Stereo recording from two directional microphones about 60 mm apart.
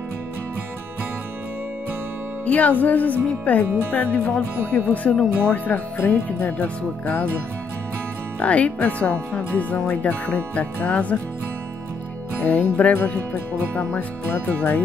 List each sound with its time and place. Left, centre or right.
2.4 s speech: left
8.4 s speech: left
12.4 s speech: left